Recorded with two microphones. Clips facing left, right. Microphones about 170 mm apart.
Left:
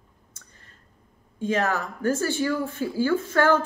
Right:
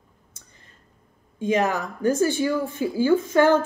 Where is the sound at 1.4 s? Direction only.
15° right (ahead or behind).